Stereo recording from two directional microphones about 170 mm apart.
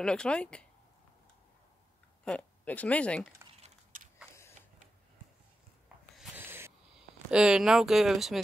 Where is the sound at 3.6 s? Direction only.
50° right (ahead or behind).